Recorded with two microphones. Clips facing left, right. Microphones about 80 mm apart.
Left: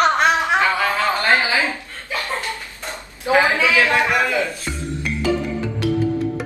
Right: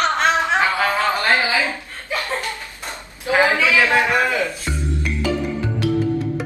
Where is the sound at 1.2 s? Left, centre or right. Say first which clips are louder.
Left 1 dB; left.